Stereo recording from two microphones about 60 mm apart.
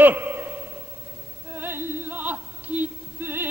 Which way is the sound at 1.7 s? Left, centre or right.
Right.